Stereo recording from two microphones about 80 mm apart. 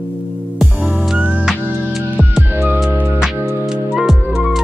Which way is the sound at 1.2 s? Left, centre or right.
Centre.